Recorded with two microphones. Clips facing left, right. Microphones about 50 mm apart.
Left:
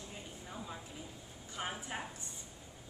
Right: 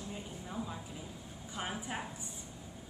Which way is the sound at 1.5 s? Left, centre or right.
Centre.